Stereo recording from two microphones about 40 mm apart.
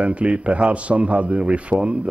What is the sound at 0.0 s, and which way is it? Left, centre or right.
A man's voice, right.